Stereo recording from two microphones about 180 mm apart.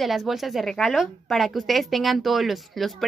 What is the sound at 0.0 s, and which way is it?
A woman's voice, centre (ahead or behind).